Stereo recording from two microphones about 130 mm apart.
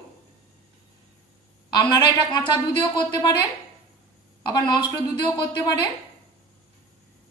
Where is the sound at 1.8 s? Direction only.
35° left (ahead or behind).